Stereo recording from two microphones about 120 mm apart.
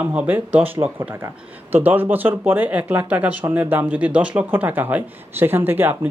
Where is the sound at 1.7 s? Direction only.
15° right (ahead or behind).